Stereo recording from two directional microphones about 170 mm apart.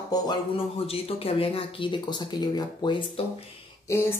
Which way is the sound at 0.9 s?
35° left (ahead or behind).